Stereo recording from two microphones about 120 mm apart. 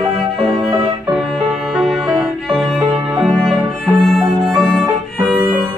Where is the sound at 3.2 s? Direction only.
Centre (ahead or behind).